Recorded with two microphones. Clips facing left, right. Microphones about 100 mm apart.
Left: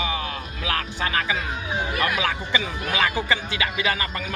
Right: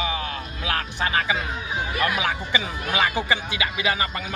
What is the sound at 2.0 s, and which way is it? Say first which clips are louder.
Speech: right 2 dB; 20° right (ahead or behind).